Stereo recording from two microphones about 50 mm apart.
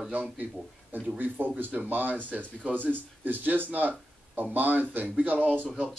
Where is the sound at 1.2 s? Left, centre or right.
Right.